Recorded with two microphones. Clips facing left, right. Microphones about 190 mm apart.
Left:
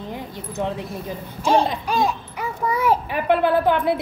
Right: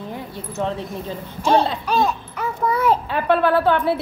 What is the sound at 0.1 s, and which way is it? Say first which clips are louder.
A child's voice: even; 15° left (ahead or behind).